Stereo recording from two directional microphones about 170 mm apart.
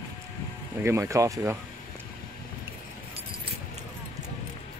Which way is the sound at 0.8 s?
15° right (ahead or behind).